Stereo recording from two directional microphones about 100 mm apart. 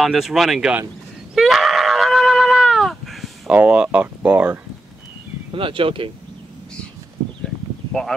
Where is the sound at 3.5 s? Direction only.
10° right (ahead or behind).